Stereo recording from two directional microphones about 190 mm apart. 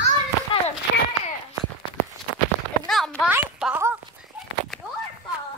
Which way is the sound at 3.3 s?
10° right (ahead or behind).